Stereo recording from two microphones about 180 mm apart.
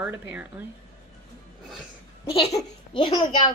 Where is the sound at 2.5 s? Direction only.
20° left (ahead or behind).